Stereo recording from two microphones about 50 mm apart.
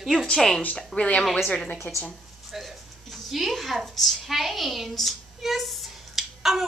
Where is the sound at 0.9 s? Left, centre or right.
Left.